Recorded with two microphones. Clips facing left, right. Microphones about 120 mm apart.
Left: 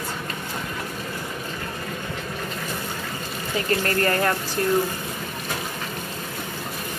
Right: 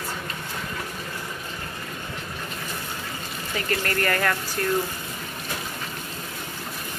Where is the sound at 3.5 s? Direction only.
30° left (ahead or behind).